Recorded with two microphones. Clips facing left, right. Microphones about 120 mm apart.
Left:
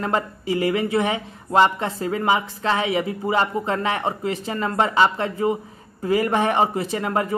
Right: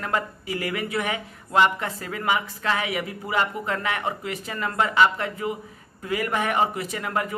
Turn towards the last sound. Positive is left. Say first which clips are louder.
# left 4 dB
turn(degrees=30)  # may be behind; listen again after turning